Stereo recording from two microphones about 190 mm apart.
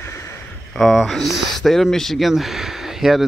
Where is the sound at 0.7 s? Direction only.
Centre (ahead or behind).